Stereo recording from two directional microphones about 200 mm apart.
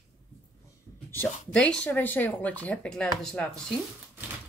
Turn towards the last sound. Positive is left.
turn(degrees=5)  # may be behind; listen again after turning